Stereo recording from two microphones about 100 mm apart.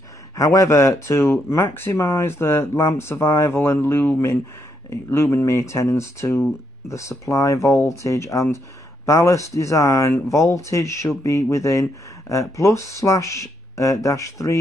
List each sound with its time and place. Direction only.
0.4 s speech: 35° left (ahead or behind)